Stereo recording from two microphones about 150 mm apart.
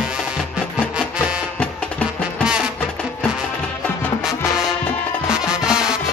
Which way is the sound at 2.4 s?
5° right (ahead or behind).